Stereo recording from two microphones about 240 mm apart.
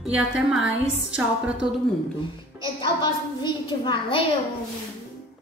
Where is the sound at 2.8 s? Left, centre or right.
Centre.